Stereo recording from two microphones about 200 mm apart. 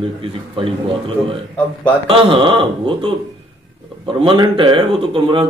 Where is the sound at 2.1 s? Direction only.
25° right (ahead or behind).